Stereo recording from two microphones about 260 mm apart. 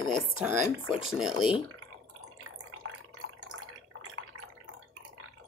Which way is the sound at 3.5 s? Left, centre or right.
Right.